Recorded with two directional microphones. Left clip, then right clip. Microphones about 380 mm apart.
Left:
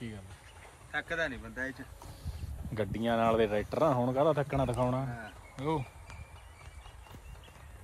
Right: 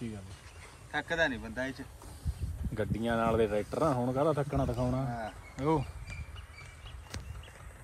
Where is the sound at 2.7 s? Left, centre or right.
Centre.